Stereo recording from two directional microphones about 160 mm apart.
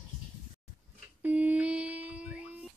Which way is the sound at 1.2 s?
10° right (ahead or behind).